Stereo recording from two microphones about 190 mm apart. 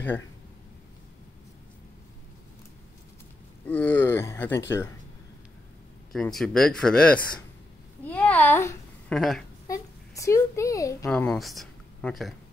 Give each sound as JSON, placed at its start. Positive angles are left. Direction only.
{"t": 3.6, "sound": "speech", "side_deg": 10}
{"t": 6.1, "sound": "a child's voice", "side_deg": 0}
{"t": 9.1, "sound": "speech", "side_deg": 0}
{"t": 9.7, "sound": "a child's voice", "side_deg": 15}
{"t": 11.1, "sound": "speech", "side_deg": 5}